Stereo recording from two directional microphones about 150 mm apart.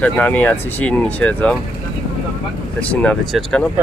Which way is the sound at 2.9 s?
5° left (ahead or behind).